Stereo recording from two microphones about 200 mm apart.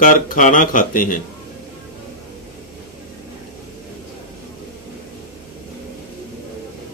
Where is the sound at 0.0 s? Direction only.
40° left (ahead or behind).